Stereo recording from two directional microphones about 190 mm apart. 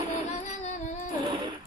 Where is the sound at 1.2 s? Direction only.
25° right (ahead or behind).